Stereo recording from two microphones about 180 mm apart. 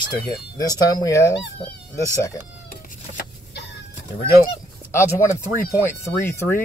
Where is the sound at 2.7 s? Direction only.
55° left (ahead or behind).